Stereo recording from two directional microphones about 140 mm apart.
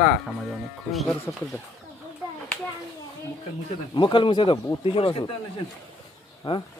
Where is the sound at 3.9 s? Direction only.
35° left (ahead or behind).